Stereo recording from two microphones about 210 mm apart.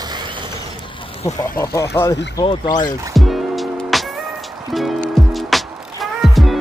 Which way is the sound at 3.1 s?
Centre (ahead or behind).